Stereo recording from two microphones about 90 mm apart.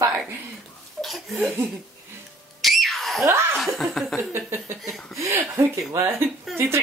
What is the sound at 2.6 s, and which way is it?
Screaming, centre (ahead or behind).